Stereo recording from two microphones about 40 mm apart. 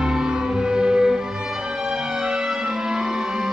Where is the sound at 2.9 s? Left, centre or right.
Centre.